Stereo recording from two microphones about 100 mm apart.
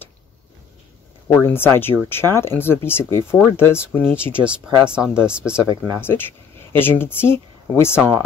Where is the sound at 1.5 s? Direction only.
25° left (ahead or behind).